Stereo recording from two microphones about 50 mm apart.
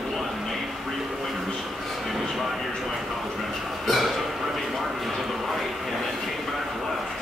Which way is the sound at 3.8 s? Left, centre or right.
Centre.